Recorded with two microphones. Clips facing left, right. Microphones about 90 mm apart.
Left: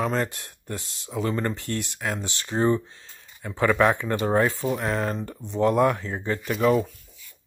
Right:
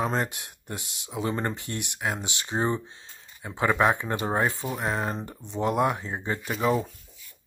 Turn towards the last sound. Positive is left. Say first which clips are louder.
# left 4 dB
turn(degrees=-10)  # may be behind; listen again after turning